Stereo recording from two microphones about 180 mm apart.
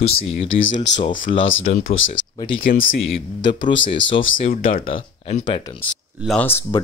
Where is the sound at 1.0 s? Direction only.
50° left (ahead or behind).